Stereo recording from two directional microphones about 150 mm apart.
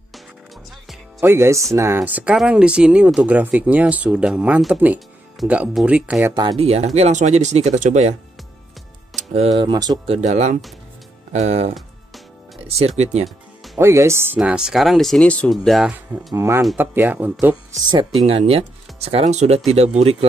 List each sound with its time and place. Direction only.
1.2 s speech: 20° right (ahead or behind)
6.6 s speech: 45° right (ahead or behind)
9.7 s speech: 25° right (ahead or behind)
10.0 s speech: 45° right (ahead or behind)
13.7 s speech: 20° right (ahead or behind); by 16.3 s centre (ahead or behind)
16.3 s speech: 15° right (ahead or behind)
18.2 s speech: 45° right (ahead or behind)